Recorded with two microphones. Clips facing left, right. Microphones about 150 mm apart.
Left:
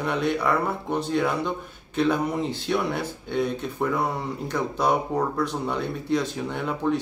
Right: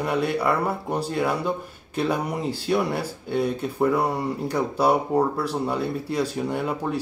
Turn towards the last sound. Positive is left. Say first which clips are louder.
# even
turn(degrees=-10)  # may be behind; listen again after turning